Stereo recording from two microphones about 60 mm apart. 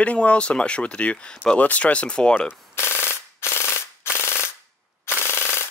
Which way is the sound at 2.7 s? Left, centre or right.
Left.